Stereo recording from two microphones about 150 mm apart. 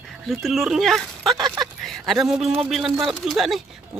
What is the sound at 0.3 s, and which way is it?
Speech, centre (ahead or behind).